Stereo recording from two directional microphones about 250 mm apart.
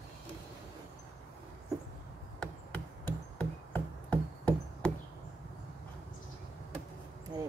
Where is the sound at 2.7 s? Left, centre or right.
Centre.